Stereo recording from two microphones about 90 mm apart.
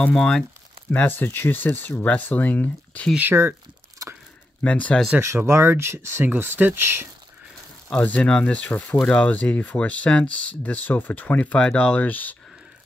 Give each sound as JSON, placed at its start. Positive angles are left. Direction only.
{"t": 0.0, "sound": "speech", "side_deg": 10}
{"t": 0.9, "sound": "speech", "side_deg": 20}
{"t": 3.2, "sound": "speech", "side_deg": -25}
{"t": 4.0, "sound": "a sound", "side_deg": -35}
{"t": 4.6, "sound": "speech", "side_deg": 15}
{"t": 5.2, "sound": "speech", "side_deg": -30}
{"t": 7.9, "sound": "speech", "side_deg": 15}